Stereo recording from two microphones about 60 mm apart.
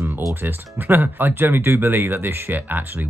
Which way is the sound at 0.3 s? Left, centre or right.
Right.